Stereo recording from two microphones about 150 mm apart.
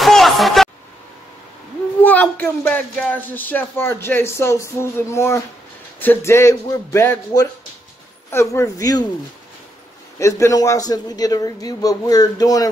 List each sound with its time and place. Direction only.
0.0 s a sound: centre (ahead or behind)
2.0 s a man's voice: 10° left (ahead or behind)
10.1 s a man's voice: 20° left (ahead or behind)